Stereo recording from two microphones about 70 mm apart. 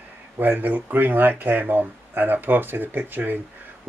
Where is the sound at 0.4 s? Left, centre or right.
Right.